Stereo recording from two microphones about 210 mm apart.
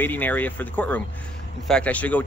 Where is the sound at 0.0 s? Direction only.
10° left (ahead or behind).